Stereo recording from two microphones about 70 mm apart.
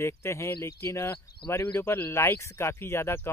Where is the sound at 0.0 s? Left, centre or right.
Left.